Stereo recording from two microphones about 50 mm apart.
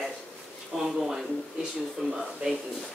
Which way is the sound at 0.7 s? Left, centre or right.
Centre.